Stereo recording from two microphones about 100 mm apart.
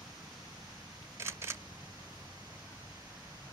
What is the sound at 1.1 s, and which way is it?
Camera, 25° right (ahead or behind).